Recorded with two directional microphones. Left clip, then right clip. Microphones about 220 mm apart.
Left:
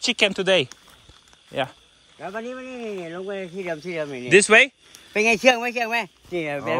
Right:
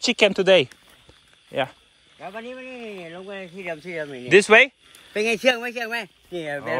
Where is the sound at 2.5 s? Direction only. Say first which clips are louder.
Left 3 dB; 50° left (ahead or behind).